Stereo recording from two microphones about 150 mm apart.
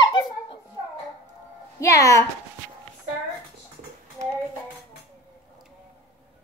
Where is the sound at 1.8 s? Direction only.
20° left (ahead or behind).